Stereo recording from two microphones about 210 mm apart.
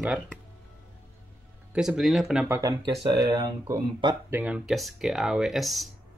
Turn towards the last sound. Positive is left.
turn(degrees=0)  # may be behind; listen again after turning